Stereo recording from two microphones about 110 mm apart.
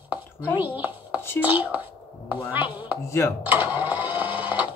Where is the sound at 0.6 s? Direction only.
15° right (ahead or behind).